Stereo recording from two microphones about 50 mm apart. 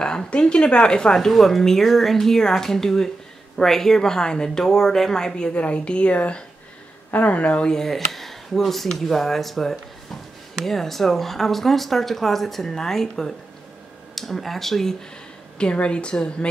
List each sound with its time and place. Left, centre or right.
0.0 s speech: centre
5.5 s speech: left
7.7 s speech: centre
15.5 s speech: left